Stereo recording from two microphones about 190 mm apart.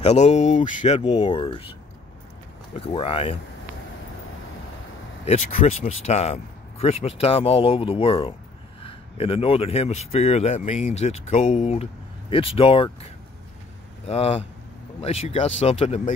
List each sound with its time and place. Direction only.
0.0 s speech: 35° left (ahead or behind)
1.2 s speech: 25° left (ahead or behind)
2.7 s speech: 30° left (ahead or behind)
5.2 s speech: 35° left (ahead or behind)